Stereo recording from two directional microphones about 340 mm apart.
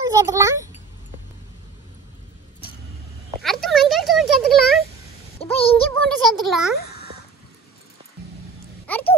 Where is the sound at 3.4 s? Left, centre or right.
Centre.